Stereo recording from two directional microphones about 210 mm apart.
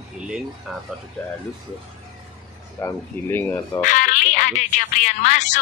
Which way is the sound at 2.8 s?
10° left (ahead or behind).